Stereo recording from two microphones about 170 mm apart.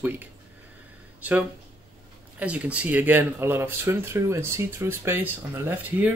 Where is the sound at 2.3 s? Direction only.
10° right (ahead or behind).